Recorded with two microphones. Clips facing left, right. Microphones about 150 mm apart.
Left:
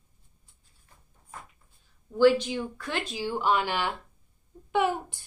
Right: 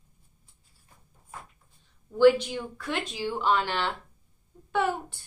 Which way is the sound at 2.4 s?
5° left (ahead or behind).